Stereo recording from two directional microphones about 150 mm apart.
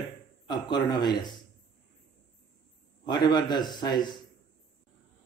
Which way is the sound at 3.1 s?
30° left (ahead or behind).